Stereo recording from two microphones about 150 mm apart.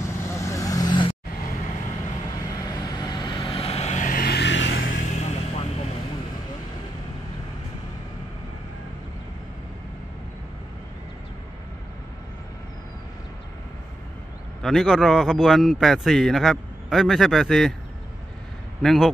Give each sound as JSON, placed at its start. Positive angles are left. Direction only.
{"t": 0.0, "sound": "vehicle", "side_deg": 20}
{"t": 2.6, "sound": "vehicle", "side_deg": 25}
{"t": 14.6, "sound": "a man's voice", "side_deg": 0}
{"t": 18.8, "sound": "a man's voice", "side_deg": 0}